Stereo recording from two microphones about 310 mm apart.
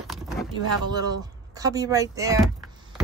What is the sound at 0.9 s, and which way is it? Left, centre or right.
Speech, centre.